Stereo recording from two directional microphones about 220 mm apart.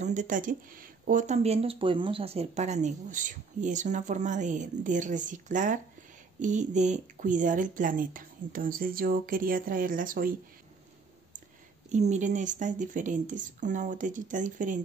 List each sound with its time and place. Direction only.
0.0 s speech: 35° right (ahead or behind)
11.9 s speech: 35° right (ahead or behind)